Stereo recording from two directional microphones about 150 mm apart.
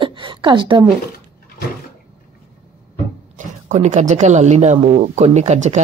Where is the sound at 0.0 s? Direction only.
35° right (ahead or behind).